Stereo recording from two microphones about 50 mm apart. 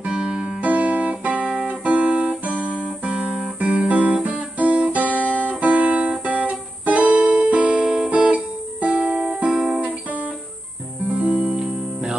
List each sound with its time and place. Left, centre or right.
0.6 s music: right
1.9 s guitar: right
5.4 s music: right; by 8.1 s centre
8.1 s music: right
9.5 s music: centre